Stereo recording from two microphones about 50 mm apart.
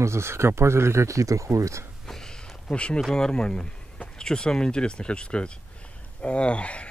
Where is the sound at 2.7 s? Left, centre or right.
Left.